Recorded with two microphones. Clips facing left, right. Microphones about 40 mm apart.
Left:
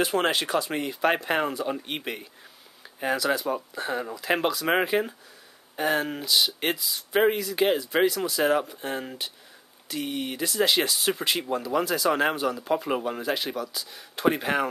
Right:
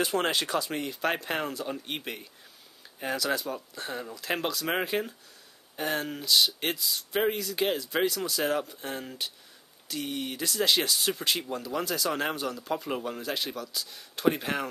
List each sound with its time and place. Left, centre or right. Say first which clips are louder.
0.0 s speech: left 3 dB; left; by 7.2 s centre
7.2 s speech: left 6 dB; centre